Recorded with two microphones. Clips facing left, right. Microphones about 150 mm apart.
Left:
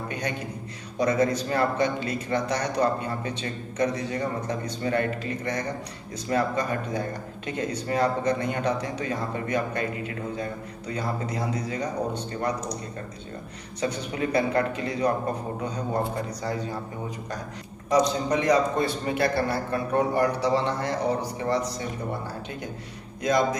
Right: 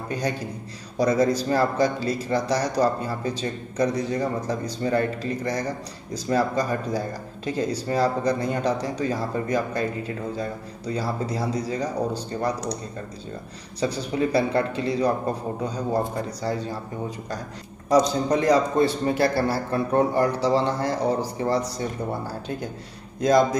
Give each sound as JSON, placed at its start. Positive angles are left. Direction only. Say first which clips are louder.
{"t": 0.1, "sound": "a man's voice", "louder": "right 8 dB", "side_deg": -35}
{"t": 13.7, "sound": "speech", "louder": "right 4 dB", "side_deg": -35}
{"t": 17.8, "sound": "speech", "louder": "right 3 dB", "side_deg": -35}